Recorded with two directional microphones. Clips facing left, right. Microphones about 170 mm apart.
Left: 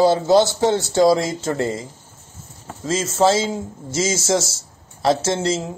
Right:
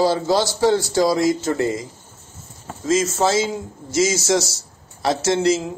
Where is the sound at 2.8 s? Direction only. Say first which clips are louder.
Left 1 dB; 30° left (ahead or behind).